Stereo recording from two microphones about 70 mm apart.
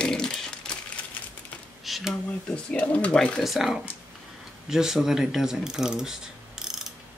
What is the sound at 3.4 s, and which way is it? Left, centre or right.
Speech, centre.